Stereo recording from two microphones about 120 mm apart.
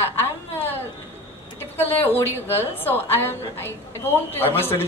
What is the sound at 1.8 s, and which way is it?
A woman's voice, 15° left (ahead or behind).